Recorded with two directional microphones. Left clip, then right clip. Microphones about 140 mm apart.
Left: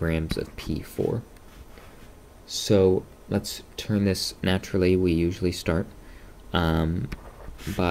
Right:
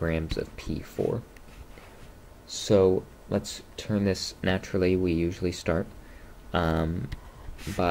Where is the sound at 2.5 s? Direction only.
30° left (ahead or behind).